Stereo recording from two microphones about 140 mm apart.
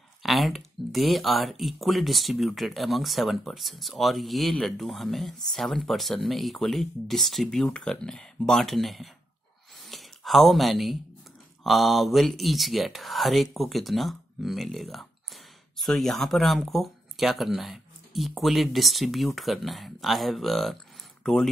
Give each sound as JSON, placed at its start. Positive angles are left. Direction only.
{"t": 0.2, "sound": "speech", "side_deg": 0}
{"t": 9.8, "sound": "a sound", "side_deg": 0}
{"t": 11.6, "sound": "speech", "side_deg": 0}